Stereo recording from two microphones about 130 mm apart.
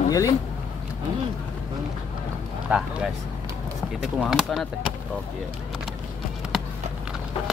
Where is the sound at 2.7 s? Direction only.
10° right (ahead or behind).